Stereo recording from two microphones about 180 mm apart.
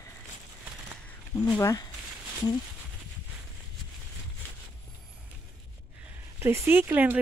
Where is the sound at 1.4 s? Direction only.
20° left (ahead or behind).